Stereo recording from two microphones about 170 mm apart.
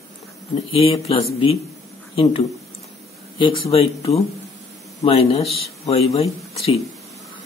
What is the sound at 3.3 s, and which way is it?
Speech, 30° left (ahead or behind).